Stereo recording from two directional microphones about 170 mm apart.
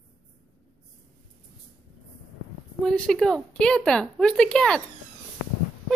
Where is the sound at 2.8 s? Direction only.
5° left (ahead or behind).